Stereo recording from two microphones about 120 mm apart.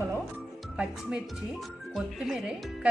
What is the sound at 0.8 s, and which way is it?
Speech, 10° right (ahead or behind).